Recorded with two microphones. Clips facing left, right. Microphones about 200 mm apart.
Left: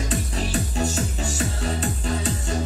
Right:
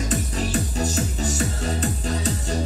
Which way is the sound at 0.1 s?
40° right (ahead or behind).